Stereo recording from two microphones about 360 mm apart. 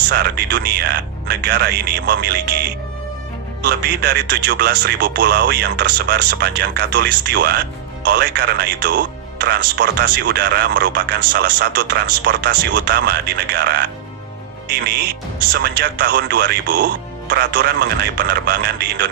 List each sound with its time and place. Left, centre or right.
0.1 s speech: right
3.6 s speech: right
15.5 s speech: right